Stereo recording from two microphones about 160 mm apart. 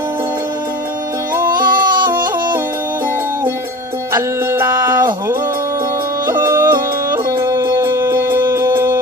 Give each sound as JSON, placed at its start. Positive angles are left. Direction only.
{"t": 1.5, "sound": "yodeling", "side_deg": -60}
{"t": 4.1, "sound": "music", "side_deg": -15}
{"t": 6.4, "sound": "music", "side_deg": -15}
{"t": 7.4, "sound": "dog", "side_deg": -20}
{"t": 8.2, "sound": "music", "side_deg": -15}